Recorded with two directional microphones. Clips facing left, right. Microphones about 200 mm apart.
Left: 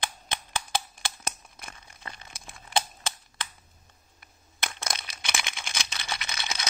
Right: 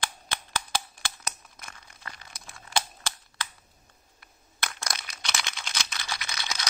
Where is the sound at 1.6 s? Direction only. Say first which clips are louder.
Left 2 dB; 20° left (ahead or behind).